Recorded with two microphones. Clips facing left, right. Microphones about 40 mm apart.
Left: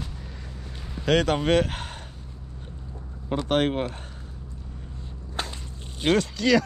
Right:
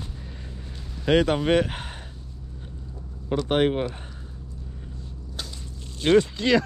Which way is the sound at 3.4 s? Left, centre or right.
Centre.